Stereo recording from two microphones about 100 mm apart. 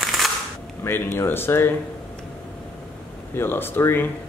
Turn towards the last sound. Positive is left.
turn(degrees=20)  # may be behind; listen again after turning